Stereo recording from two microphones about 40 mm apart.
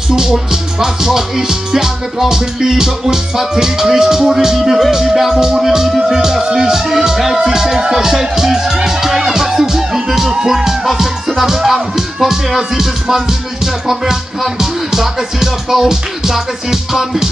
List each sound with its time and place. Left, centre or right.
0.1 s music: centre